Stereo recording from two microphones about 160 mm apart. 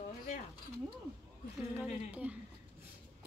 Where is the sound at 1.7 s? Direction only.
10° right (ahead or behind).